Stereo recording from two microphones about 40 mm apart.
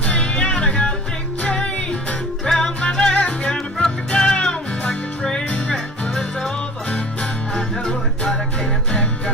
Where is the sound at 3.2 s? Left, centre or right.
Left.